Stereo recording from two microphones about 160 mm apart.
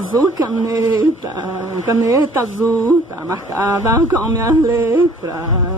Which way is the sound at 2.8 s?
20° right (ahead or behind).